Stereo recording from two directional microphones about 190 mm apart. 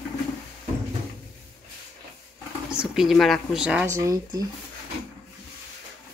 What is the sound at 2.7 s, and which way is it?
Speech, 5° right (ahead or behind).